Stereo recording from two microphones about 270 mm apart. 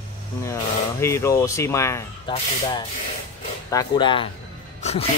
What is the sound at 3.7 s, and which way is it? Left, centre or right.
Speech, centre.